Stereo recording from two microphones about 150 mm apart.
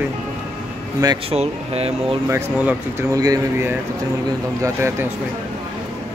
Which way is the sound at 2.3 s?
20° right (ahead or behind).